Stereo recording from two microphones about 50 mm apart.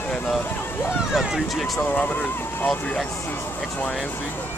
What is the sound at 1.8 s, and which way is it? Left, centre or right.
Speech, left.